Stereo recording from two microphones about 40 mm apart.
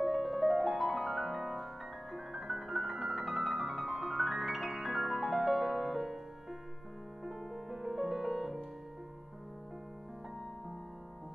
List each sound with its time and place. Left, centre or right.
0.0 s music: centre
7.2 s music: centre